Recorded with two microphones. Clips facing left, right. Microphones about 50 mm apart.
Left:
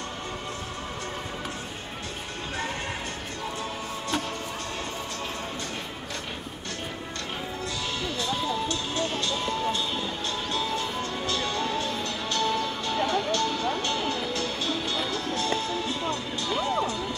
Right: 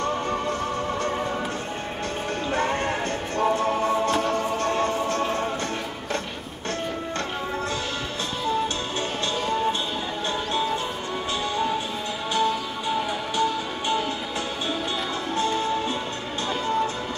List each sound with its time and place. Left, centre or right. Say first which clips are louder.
3.3 s music: right 14 dB; right
10.5 s music: right 2 dB; right
15.3 s music: right 6 dB; right